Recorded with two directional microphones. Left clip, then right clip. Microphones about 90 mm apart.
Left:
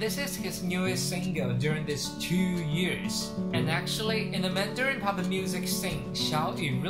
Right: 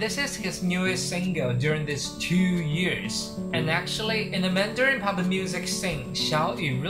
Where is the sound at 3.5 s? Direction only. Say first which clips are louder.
Right 4 dB; 25° right (ahead or behind).